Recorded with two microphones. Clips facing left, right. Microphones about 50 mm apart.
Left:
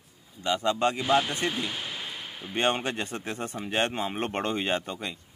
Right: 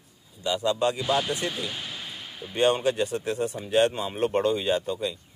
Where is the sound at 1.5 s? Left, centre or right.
Centre.